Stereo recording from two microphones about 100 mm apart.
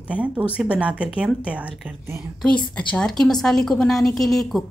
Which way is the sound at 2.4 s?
10° left (ahead or behind).